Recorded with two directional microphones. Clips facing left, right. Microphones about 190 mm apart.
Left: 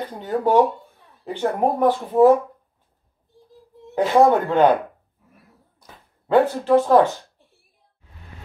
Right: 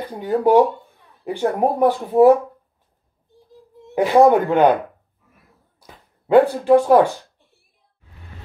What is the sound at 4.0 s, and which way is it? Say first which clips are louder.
Speech: right 3 dB; 15° right (ahead or behind).